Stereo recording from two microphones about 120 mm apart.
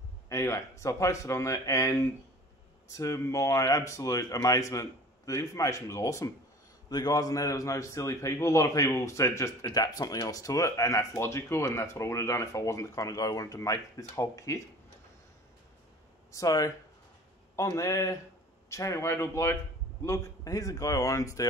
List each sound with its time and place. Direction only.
0.3 s a man's voice: 25° left (ahead or behind)
16.3 s a man's voice: 30° left (ahead or behind)